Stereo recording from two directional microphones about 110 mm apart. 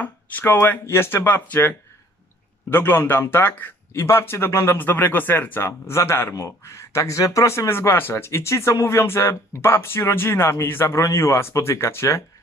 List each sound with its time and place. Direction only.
0.0 s a man's voice: 15° left (ahead or behind)